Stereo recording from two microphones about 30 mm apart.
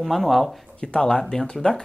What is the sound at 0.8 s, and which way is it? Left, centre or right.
Speech, left.